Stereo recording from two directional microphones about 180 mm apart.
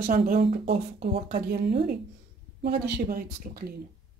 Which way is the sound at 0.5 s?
60° right (ahead or behind).